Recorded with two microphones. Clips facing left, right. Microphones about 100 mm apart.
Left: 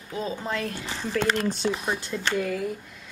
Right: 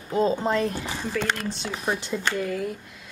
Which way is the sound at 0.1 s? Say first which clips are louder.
Right 7 dB; 30° right (ahead or behind).